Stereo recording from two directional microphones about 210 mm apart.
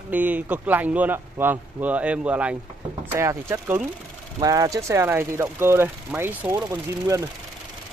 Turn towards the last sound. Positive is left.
turn(degrees=-15)  # may be behind; listen again after turning